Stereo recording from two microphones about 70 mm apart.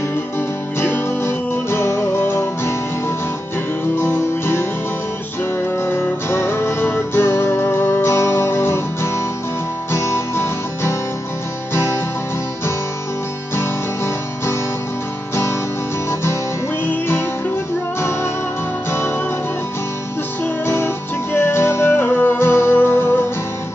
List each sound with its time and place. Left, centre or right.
0.7 s music: left
3.9 s music: left
5.8 s music: left
13.6 s music: left
18.9 s music: left
20.6 s music: left